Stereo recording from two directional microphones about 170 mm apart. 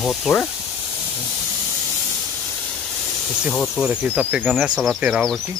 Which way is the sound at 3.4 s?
Centre (ahead or behind).